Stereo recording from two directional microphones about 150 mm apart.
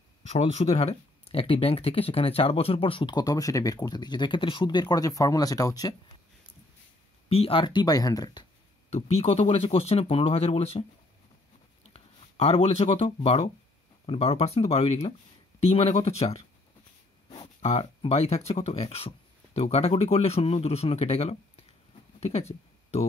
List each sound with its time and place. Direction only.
0.3 s speech: 45° left (ahead or behind); by 5.9 s 25° left (ahead or behind)
7.2 s speech: 40° left (ahead or behind); by 8.5 s 25° left (ahead or behind)
8.9 s speech: 45° left (ahead or behind)
11.9 s speech: 45° left (ahead or behind)
22.2 s a sound: 45° left (ahead or behind)